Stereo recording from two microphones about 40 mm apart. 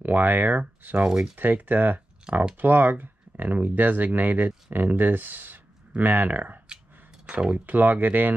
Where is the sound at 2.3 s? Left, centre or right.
Centre.